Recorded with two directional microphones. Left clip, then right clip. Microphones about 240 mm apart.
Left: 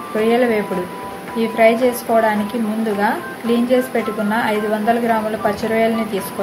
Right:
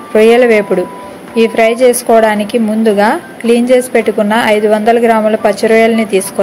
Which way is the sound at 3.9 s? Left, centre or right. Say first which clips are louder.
Right 9 dB; right.